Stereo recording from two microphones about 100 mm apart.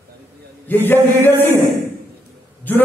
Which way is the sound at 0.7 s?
20° left (ahead or behind).